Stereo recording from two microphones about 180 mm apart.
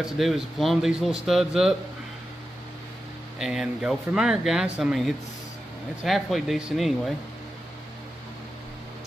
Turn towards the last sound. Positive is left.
turn(degrees=0)  # may be behind; listen again after turning